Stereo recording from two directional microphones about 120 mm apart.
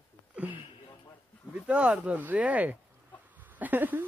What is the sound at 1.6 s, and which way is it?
Speech, 10° right (ahead or behind).